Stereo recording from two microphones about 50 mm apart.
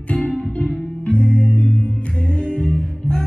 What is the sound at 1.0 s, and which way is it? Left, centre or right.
Music, left.